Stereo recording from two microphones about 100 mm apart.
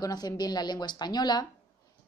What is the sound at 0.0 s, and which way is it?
A woman's voice, 40° left (ahead or behind).